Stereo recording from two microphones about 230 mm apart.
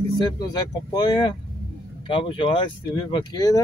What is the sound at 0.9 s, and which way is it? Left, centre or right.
Speech, centre.